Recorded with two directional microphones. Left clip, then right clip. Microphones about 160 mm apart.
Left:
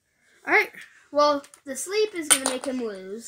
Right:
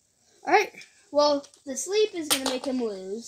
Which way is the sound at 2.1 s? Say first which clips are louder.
Left 2 dB; 25° left (ahead or behind).